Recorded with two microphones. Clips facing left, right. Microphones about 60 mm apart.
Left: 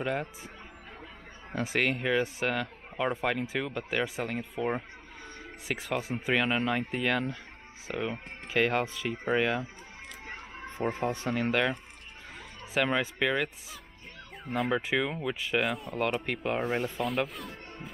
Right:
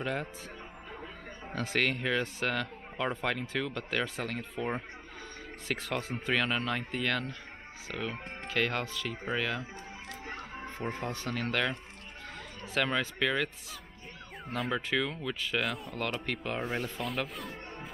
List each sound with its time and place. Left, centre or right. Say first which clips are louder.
0.0 s speech: left 3 dB; centre
1.5 s speech: left 2 dB; centre
14.4 s speech: left 4 dB; centre
14.8 s speech: left 2 dB; centre
15.6 s speech: left 4 dB; centre
17.0 s speech: left 4 dB; centre